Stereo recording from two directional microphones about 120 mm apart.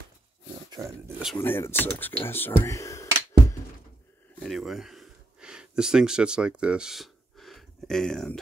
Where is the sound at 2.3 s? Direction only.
15° left (ahead or behind).